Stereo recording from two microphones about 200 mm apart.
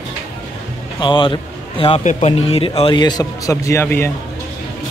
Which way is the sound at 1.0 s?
25° left (ahead or behind).